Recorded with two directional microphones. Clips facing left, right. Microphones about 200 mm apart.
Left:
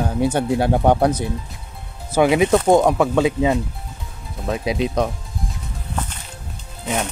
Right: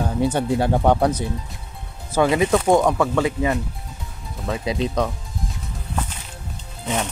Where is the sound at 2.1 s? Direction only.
10° left (ahead or behind).